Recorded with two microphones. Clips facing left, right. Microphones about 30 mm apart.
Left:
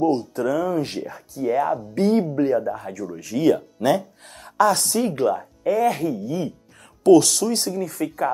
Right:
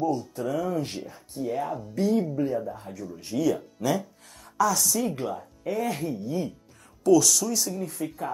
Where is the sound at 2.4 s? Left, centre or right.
Left.